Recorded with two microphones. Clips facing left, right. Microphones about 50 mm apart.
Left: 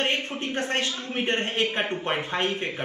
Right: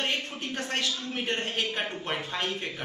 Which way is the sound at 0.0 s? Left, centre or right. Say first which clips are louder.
Left 4 dB; left.